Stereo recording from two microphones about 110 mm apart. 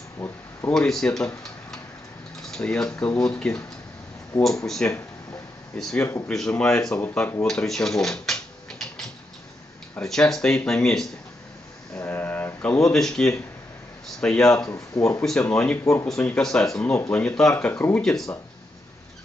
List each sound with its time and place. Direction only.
0.2 s speech: 10° left (ahead or behind)
7.0 s speech: 20° left (ahead or behind)
7.4 s a sound: 5° left (ahead or behind)
9.9 s speech: 5° left (ahead or behind)
12.0 s a sound: 15° left (ahead or behind)
12.9 s speech: 5° left (ahead or behind)
14.5 s speech: 30° left (ahead or behind)
15.5 s speech: 10° left (ahead or behind)
15.8 s speech: 30° left (ahead or behind)
16.3 s speech: 5° left (ahead or behind)
17.7 s speech: 20° left (ahead or behind)
18.0 s speech: 5° left (ahead or behind)